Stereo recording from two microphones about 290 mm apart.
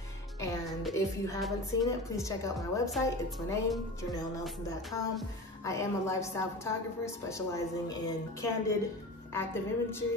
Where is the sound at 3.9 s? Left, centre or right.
Centre.